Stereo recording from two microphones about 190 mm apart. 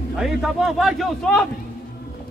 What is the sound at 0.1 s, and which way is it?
A man's voice, centre (ahead or behind).